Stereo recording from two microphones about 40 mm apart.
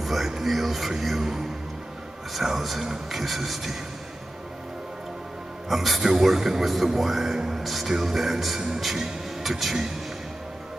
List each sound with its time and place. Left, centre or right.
0.0 s speech: centre
5.7 s speech: centre
8.5 s speech: centre
9.4 s speech: centre